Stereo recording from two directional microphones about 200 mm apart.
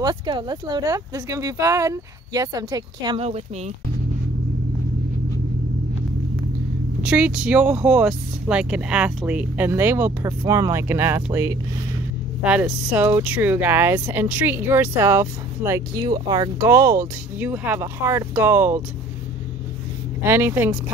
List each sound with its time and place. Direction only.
0.0 s speech: 20° right (ahead or behind)
7.1 s speech: 5° right (ahead or behind)
12.4 s speech: 5° right (ahead or behind)
20.2 s speech: 10° right (ahead or behind)